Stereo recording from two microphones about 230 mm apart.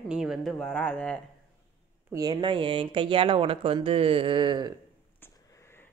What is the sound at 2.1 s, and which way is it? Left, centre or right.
Speech, centre.